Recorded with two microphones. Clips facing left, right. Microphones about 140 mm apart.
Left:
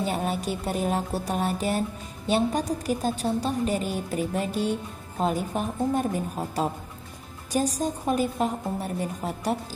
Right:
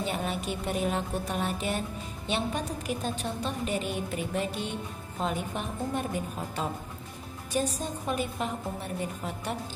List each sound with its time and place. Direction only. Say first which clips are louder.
0.0 s speech: left 4 dB; 40° left (ahead or behind)